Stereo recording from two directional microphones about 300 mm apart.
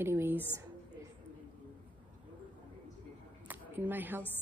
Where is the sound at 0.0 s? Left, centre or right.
Centre.